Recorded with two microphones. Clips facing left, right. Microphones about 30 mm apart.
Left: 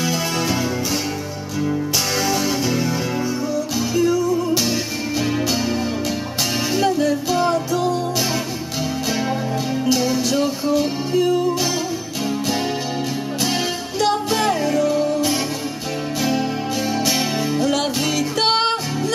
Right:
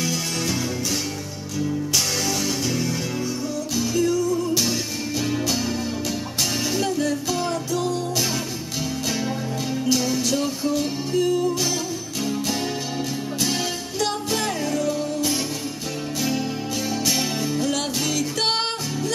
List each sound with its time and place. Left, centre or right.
0.0 s music: centre
2.2 s music: centre
9.8 s music: centre
13.4 s music: centre